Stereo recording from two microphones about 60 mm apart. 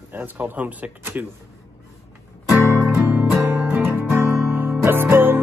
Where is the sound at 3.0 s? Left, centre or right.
Right.